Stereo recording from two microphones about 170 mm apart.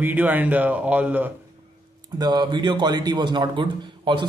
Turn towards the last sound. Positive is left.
turn(degrees=-30)  # may be behind; listen again after turning